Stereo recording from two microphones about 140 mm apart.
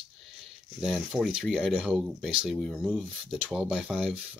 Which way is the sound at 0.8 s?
Centre (ahead or behind).